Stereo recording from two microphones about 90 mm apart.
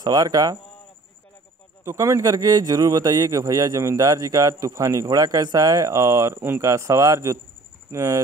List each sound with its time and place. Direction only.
0.0 s speech: 45° right (ahead or behind)
1.9 s a man's voice: 35° right (ahead or behind)